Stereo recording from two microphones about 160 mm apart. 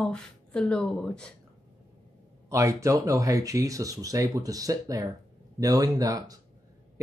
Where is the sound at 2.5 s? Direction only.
20° right (ahead or behind).